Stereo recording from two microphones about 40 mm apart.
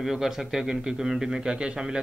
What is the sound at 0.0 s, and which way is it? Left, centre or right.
A man's voice, centre.